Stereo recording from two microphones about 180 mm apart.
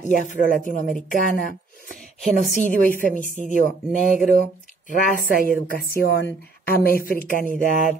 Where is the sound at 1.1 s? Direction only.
50° left (ahead or behind).